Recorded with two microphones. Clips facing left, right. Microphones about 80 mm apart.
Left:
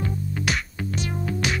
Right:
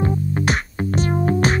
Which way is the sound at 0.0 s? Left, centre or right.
Right.